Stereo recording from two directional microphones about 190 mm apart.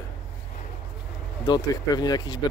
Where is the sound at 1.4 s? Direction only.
20° left (ahead or behind).